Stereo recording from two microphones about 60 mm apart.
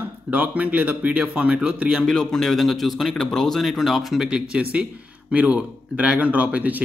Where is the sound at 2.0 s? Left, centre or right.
Centre.